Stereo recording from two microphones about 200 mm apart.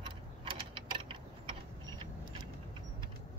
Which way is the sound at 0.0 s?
25° right (ahead or behind).